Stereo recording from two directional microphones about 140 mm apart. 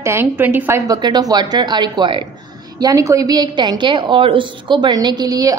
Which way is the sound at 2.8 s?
25° right (ahead or behind).